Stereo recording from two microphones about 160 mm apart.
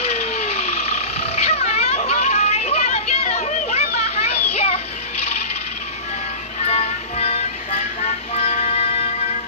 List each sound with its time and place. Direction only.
0.0 s vehicle: 40° left (ahead or behind)
4.5 s a sound: 40° left (ahead or behind)
6.7 s music: 40° left (ahead or behind)